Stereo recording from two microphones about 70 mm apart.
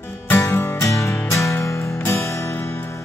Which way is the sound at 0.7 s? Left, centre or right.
Left.